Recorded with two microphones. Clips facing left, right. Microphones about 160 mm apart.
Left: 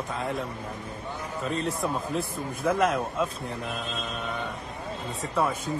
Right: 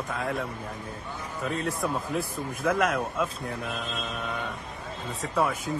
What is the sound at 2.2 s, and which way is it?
Speech, 20° left (ahead or behind).